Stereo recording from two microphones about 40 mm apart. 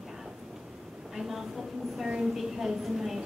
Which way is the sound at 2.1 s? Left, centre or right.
Centre.